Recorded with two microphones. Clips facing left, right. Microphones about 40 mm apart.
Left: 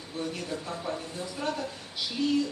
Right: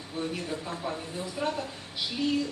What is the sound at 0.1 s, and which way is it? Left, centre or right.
Speech, centre.